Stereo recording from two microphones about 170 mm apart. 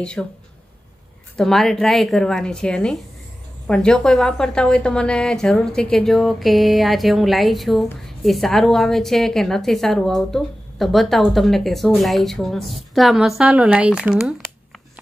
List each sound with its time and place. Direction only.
0.0 s a woman's voice: 5° left (ahead or behind)
1.3 s a woman's voice: centre (ahead or behind)